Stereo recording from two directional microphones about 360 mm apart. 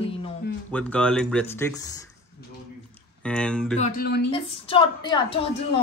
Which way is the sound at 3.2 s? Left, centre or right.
Centre.